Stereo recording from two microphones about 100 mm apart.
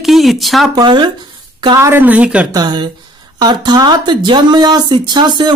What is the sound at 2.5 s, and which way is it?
Speech, 45° right (ahead or behind).